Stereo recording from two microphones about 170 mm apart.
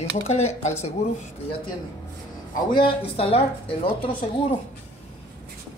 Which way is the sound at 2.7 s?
30° left (ahead or behind).